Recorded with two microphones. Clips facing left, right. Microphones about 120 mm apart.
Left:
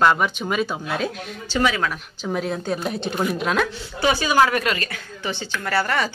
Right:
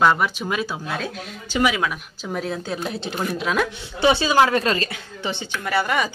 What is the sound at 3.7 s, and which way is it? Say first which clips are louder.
A woman's voice: right 3 dB; 25° right (ahead or behind).